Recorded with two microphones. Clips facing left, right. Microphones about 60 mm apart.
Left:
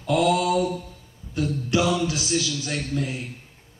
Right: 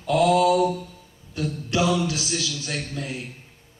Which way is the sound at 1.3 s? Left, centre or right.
Left.